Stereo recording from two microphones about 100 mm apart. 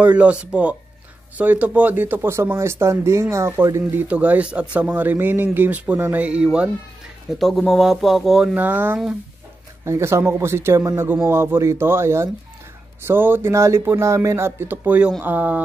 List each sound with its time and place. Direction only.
0.0 s speech: 15° right (ahead or behind)
7.3 s speech: centre (ahead or behind)
8.5 s speech: 15° right (ahead or behind)
9.8 s speech: 30° right (ahead or behind)